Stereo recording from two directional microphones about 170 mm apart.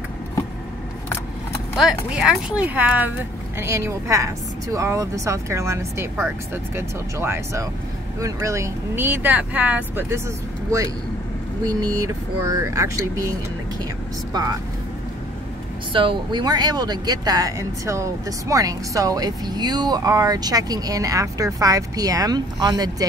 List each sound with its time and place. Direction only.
1.8 s speech: 5° right (ahead or behind)
11.6 s speech: 20° right (ahead or behind)
15.9 s speech: 30° right (ahead or behind)